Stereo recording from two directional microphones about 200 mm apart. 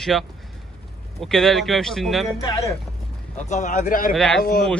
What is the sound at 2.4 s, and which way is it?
Speech, 20° left (ahead or behind).